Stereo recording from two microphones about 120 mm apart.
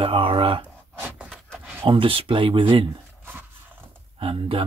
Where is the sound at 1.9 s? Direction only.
45° right (ahead or behind).